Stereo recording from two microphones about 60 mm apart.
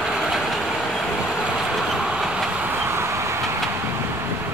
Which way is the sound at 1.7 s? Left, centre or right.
Centre.